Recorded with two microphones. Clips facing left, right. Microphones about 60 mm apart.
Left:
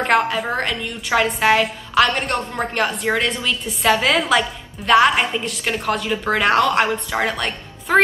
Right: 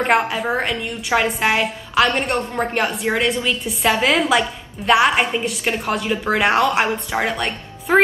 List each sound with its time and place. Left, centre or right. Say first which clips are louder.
0.0 s a woman's voice: even; centre